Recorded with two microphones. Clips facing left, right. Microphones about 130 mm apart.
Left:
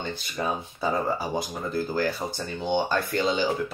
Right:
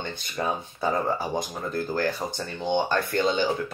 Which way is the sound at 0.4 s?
Centre (ahead or behind).